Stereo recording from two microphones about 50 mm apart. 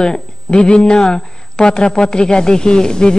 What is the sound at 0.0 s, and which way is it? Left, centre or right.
A man's voice, centre.